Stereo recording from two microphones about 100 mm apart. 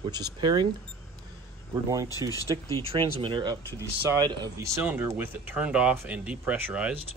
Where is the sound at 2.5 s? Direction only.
40° right (ahead or behind).